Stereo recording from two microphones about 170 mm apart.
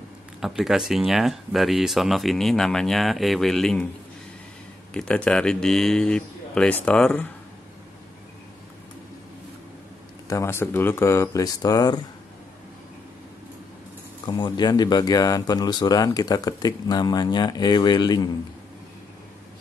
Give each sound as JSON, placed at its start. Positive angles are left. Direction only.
{"t": 0.4, "sound": "speech", "side_deg": 0}
{"t": 4.9, "sound": "speech", "side_deg": 5}
{"t": 10.2, "sound": "speech", "side_deg": 15}
{"t": 14.2, "sound": "speech", "side_deg": 25}